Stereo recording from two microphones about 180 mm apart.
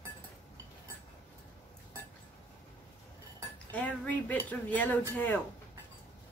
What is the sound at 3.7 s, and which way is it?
Speech, 10° left (ahead or behind).